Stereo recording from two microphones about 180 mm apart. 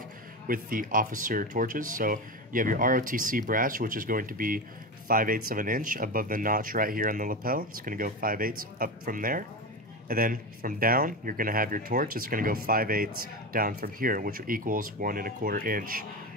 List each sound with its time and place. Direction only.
0.5 s speech: 50° right (ahead or behind)